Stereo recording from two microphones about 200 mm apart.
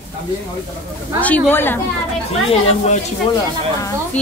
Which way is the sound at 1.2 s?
10° left (ahead or behind).